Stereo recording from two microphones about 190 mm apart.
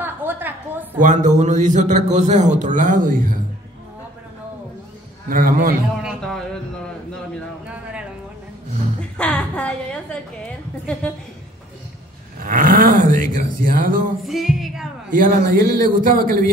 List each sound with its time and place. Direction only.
0.0 s a sound: 10° right (ahead or behind)
0.9 s a man's voice: 40° right (ahead or behind)
5.3 s speech: 45° right (ahead or behind)
6.0 s a woman's voice: 5° left (ahead or behind)
9.1 s a woman's voice: 5° left (ahead or behind)
12.4 s speech: 45° right (ahead or behind)
14.2 s a woman's voice: centre (ahead or behind)
15.0 s speech: 45° right (ahead or behind)